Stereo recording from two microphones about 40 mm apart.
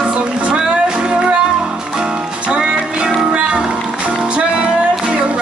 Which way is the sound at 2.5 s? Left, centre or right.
Right.